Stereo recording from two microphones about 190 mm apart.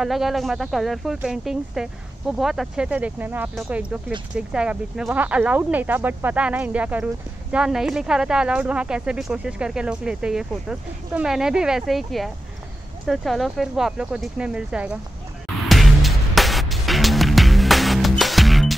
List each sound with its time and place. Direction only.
0.0 s speech: centre (ahead or behind)
15.7 s music: centre (ahead or behind)